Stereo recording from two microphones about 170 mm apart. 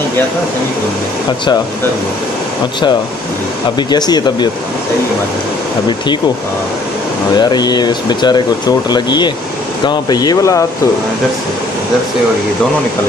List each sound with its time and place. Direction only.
3.9 s speech: 25° left (ahead or behind)
7.3 s speech: 25° left (ahead or behind)